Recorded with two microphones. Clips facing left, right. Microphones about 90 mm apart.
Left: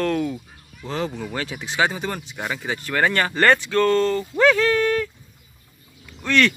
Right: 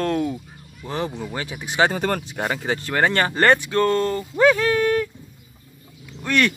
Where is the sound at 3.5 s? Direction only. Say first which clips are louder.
Left 1 dB; 15° right (ahead or behind).